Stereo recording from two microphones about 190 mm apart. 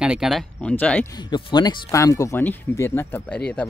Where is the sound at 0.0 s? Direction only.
5° right (ahead or behind).